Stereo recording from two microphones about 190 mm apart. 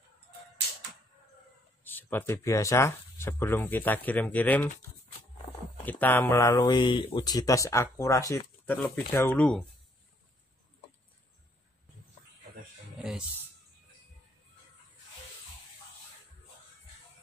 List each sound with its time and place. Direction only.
1.9 s speech: 10° left (ahead or behind)
5.9 s speech: 10° left (ahead or behind)